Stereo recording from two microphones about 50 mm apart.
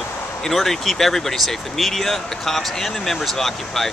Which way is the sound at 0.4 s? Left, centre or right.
Centre.